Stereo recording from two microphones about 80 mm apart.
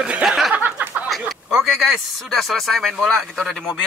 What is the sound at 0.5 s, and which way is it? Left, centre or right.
Speech, right.